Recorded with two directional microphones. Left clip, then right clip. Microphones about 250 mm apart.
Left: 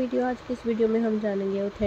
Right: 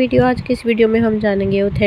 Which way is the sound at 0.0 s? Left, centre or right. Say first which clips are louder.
Right 12 dB; right.